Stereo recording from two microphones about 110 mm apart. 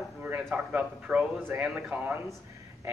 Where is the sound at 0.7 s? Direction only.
10° right (ahead or behind).